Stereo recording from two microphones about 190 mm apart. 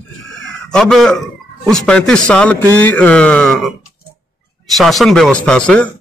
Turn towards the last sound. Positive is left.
turn(degrees=5)  # may be behind; listen again after turning